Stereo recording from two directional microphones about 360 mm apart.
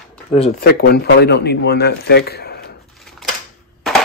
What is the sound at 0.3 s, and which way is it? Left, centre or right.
Speech, centre.